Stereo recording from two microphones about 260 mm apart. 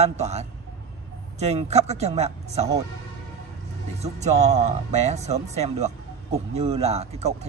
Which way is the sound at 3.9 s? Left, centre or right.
Right.